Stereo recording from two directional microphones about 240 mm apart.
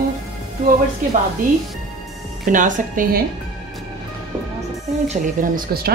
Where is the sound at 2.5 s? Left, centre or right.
Right.